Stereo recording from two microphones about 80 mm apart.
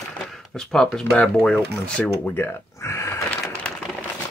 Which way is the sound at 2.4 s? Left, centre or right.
Left.